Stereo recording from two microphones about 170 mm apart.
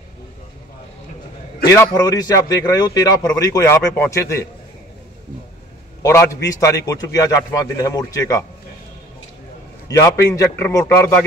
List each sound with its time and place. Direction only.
1.7 s a man's voice: 20° left (ahead or behind)
6.0 s a man's voice: 15° left (ahead or behind)
9.8 s a man's voice: 20° left (ahead or behind)